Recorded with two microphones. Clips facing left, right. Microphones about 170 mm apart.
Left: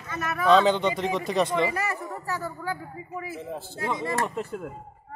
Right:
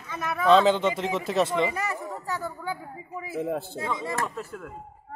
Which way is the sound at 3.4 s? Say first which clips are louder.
Right 7 dB; 60° right (ahead or behind).